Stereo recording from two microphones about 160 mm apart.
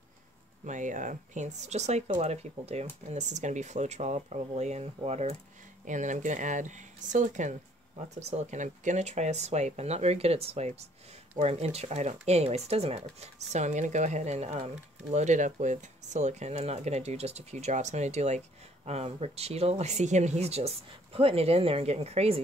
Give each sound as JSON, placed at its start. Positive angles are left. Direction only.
{"t": 0.7, "sound": "speech", "side_deg": -50}
{"t": 5.9, "sound": "speech", "side_deg": -50}